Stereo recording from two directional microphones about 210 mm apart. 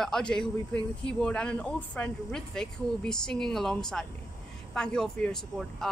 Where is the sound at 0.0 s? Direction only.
5° left (ahead or behind).